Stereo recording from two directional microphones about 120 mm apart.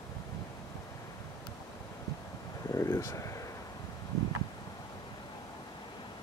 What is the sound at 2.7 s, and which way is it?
Speech, 25° left (ahead or behind).